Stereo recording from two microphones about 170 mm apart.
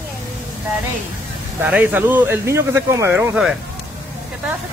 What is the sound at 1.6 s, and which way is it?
Speech, 10° right (ahead or behind).